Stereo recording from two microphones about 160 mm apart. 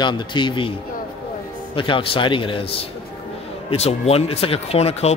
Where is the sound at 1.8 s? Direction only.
30° left (ahead or behind).